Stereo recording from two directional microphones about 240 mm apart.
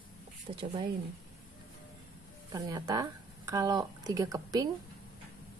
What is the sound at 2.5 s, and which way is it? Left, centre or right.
Speech, centre.